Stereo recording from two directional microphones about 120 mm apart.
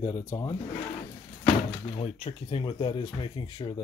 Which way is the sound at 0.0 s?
30° left (ahead or behind).